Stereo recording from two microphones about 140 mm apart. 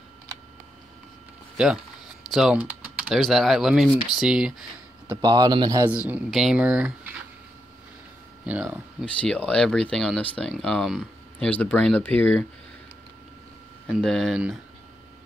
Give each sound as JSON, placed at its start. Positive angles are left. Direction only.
{"t": 2.3, "sound": "speech", "side_deg": -5}
{"t": 5.0, "sound": "a man's voice", "side_deg": -30}
{"t": 5.9, "sound": "speech", "side_deg": -10}
{"t": 8.5, "sound": "speech", "side_deg": -10}
{"t": 9.0, "sound": "speech", "side_deg": 10}
{"t": 11.4, "sound": "speech", "side_deg": 10}
{"t": 13.8, "sound": "speech", "side_deg": 5}